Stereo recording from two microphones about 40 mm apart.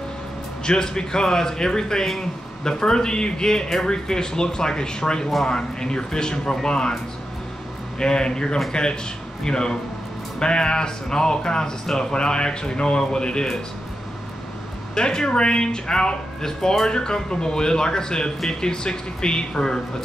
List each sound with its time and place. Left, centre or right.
0.7 s speech: centre
8.0 s speech: centre
15.0 s speech: centre